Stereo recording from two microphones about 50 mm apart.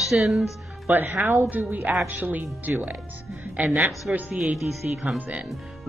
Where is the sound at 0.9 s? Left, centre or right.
Right.